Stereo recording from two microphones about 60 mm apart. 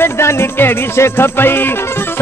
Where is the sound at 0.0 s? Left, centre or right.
Left.